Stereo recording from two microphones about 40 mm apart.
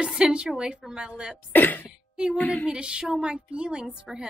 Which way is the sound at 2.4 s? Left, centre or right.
Left.